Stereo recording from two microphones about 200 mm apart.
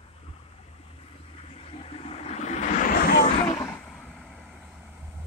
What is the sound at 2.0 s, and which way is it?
Vehicle, 30° left (ahead or behind).